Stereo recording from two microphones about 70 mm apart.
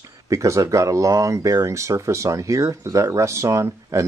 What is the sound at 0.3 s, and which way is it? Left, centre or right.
Speech, right.